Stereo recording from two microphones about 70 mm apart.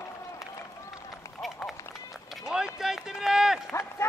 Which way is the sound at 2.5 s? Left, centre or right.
Centre.